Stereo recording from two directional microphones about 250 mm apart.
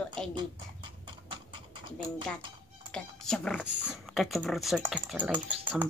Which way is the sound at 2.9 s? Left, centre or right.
Centre.